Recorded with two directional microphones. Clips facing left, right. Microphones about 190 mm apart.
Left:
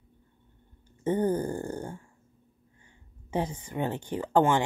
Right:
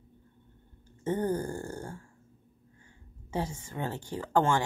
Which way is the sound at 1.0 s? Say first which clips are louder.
Left 3 dB; 20° left (ahead or behind).